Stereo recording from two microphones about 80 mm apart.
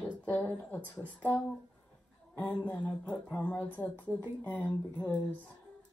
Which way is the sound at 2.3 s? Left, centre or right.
Centre.